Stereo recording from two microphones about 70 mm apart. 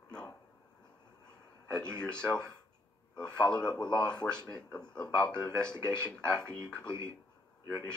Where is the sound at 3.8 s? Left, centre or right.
Left.